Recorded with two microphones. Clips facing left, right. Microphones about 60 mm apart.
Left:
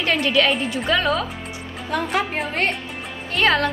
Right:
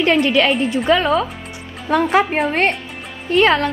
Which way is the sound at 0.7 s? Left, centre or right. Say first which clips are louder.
Right 5 dB; right.